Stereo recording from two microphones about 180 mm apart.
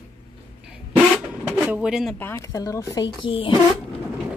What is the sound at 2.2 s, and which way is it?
Speech, 15° left (ahead or behind).